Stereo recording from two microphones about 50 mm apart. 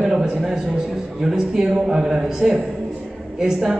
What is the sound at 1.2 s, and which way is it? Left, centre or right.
A man's voice, centre.